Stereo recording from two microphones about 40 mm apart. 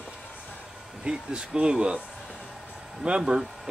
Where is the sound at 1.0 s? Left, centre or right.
Right.